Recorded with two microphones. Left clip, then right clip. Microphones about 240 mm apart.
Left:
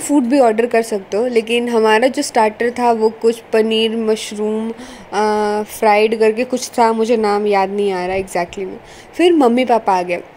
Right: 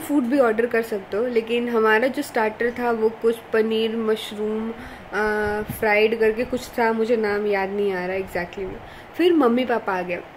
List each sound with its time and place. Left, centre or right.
0.3 s a woman's voice: centre